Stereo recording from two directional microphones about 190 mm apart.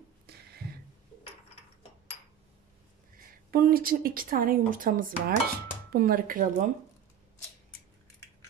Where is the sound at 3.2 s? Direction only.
50° right (ahead or behind).